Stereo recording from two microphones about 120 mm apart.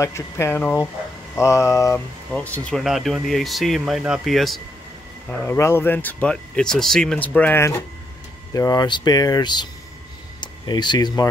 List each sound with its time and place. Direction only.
0.0 s speech: 25° left (ahead or behind)
2.3 s speech: 10° left (ahead or behind)
2.8 s speech: centre (ahead or behind)
5.3 s speech: 15° left (ahead or behind); by 11.2 s 35° left (ahead or behind)